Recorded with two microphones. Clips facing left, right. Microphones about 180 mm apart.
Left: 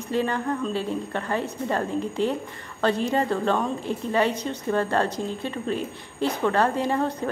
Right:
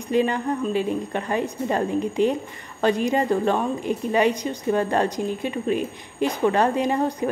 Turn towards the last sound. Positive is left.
turn(degrees=-15)  # may be behind; listen again after turning